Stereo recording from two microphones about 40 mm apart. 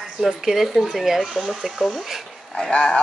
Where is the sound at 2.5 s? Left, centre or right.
Left.